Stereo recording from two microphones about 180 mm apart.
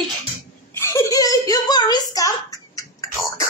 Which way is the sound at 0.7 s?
20° left (ahead or behind).